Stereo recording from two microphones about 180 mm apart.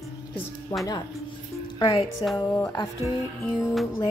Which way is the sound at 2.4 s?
20° left (ahead or behind).